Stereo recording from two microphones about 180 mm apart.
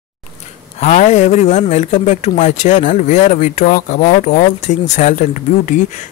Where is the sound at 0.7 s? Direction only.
40° left (ahead or behind).